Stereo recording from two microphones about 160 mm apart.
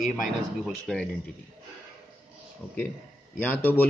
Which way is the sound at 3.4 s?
10° left (ahead or behind).